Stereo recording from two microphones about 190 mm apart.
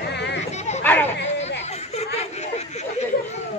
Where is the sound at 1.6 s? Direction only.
35° left (ahead or behind).